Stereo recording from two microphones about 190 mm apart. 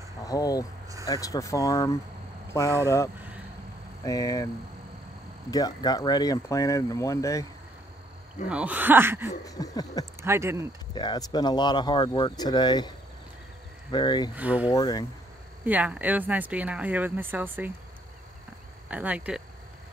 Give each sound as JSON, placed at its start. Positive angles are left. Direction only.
{"t": 0.2, "sound": "speech", "side_deg": 20}
{"t": 4.0, "sound": "speech", "side_deg": 20}
{"t": 5.5, "sound": "speech", "side_deg": 20}
{"t": 8.5, "sound": "speech", "side_deg": -5}
{"t": 9.5, "sound": "speech", "side_deg": 20}
{"t": 10.2, "sound": "speech", "side_deg": -15}
{"t": 11.0, "sound": "speech", "side_deg": 20}
{"t": 13.9, "sound": "speech", "side_deg": 20}
{"t": 14.3, "sound": "speech", "side_deg": -10}
{"t": 14.7, "sound": "speech", "side_deg": 20}
{"t": 15.6, "sound": "speech", "side_deg": -10}
{"t": 18.9, "sound": "speech", "side_deg": -5}